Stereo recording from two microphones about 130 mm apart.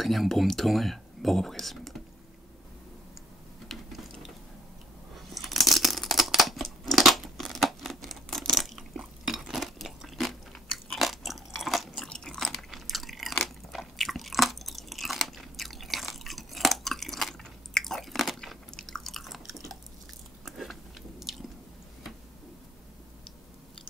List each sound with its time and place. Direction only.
0.0 s speech: centre (ahead or behind)
3.6 s mechanisms: centre (ahead or behind)
5.3 s a sound: centre (ahead or behind)
21.2 s chewing: centre (ahead or behind)